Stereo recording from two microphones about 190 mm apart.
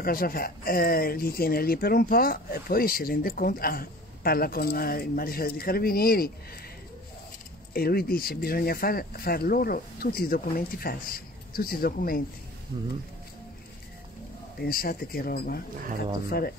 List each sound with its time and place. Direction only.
0.0 s speech: 50° left (ahead or behind)
7.7 s speech: 50° left (ahead or behind)
14.6 s speech: 50° left (ahead or behind)